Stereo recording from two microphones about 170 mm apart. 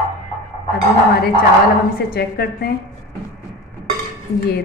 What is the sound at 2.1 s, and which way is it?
Speech, 65° left (ahead or behind).